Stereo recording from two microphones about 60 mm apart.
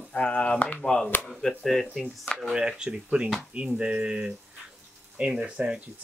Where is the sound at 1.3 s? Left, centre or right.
Centre.